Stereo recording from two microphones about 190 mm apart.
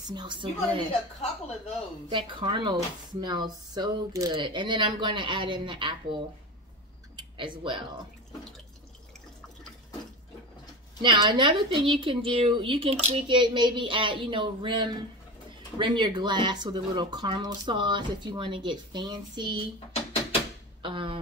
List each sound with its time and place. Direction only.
0.1 s a woman's voice: 25° right (ahead or behind)
2.0 s a woman's voice: 25° right (ahead or behind)
7.3 s a woman's voice: 25° right (ahead or behind)
11.0 s a woman's voice: 25° right (ahead or behind)
19.9 s a sound: 30° left (ahead or behind)
20.8 s a woman's voice: 25° right (ahead or behind)